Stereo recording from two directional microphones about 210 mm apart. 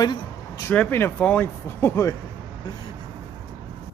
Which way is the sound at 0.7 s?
10° left (ahead or behind).